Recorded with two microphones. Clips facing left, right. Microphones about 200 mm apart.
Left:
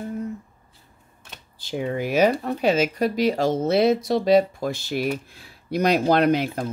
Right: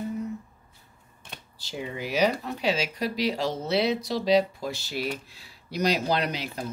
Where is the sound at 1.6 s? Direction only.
55° left (ahead or behind).